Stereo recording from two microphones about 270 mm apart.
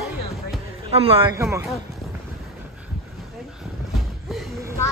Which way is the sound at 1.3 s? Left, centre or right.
Centre.